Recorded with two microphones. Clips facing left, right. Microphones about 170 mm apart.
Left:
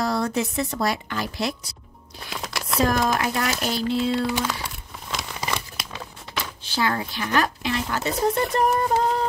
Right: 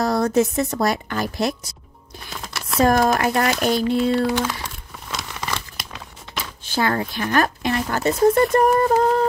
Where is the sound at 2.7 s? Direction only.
50° right (ahead or behind).